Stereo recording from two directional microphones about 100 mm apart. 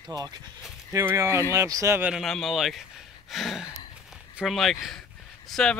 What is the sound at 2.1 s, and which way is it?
Speech, centre (ahead or behind).